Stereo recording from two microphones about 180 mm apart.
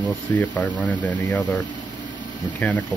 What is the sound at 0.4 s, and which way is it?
Speech, 10° left (ahead or behind).